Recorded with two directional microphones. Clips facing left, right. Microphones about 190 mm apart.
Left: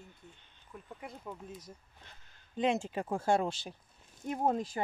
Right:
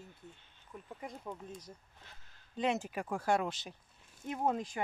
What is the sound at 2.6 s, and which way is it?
Speech, 25° left (ahead or behind).